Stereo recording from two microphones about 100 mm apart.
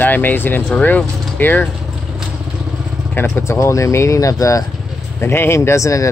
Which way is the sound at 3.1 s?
25° left (ahead or behind).